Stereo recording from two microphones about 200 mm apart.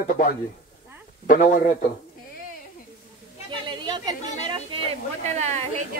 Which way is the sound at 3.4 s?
25° right (ahead or behind).